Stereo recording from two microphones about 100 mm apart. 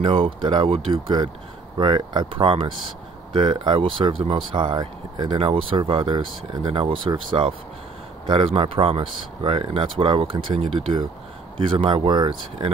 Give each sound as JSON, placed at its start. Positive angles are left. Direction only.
{"t": 0.0, "sound": "speech", "side_deg": -60}
{"t": 0.7, "sound": "speech", "side_deg": -65}
{"t": 1.8, "sound": "speech", "side_deg": -55}
{"t": 4.5, "sound": "speech", "side_deg": -50}
{"t": 5.4, "sound": "speech", "side_deg": -65}